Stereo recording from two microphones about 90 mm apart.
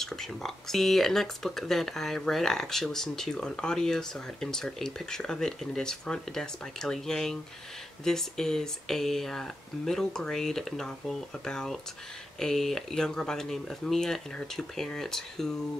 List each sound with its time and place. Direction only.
0.0 s speech: 5° left (ahead or behind)